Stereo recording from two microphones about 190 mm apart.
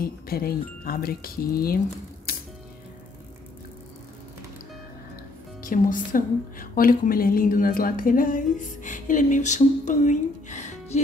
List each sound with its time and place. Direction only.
0.0 s a woman's voice: 50° left (ahead or behind)
2.3 s music: 50° left (ahead or behind)
5.6 s a woman's voice: 45° left (ahead or behind)